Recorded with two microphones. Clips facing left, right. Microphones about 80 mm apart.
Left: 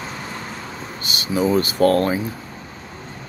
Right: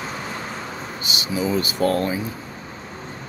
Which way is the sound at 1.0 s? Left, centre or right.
Left.